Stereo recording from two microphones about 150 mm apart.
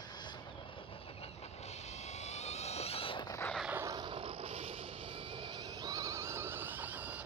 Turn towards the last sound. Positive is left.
turn(degrees=-10)  # may be behind; listen again after turning